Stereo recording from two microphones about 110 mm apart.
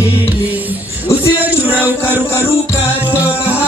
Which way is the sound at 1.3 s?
15° right (ahead or behind).